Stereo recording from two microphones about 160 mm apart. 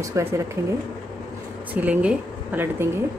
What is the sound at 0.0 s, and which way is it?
Speech, 20° right (ahead or behind).